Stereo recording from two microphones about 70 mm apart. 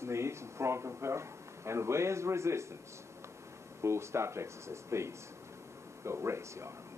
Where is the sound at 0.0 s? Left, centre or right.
Right.